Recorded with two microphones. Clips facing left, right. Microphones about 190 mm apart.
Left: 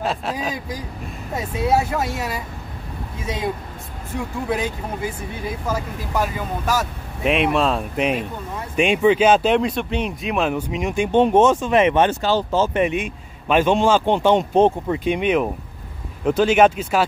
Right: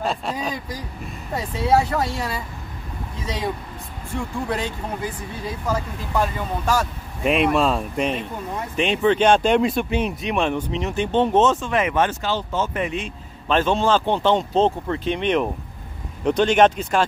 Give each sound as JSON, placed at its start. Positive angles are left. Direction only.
{"t": 0.0, "sound": "speech", "side_deg": 0}
{"t": 1.8, "sound": "speech", "side_deg": 5}
{"t": 4.2, "sound": "speech", "side_deg": 5}
{"t": 6.1, "sound": "speech", "side_deg": 5}
{"t": 12.8, "sound": "speech", "side_deg": 15}